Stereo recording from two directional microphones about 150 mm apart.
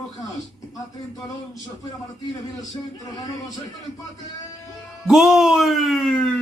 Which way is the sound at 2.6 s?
25° left (ahead or behind).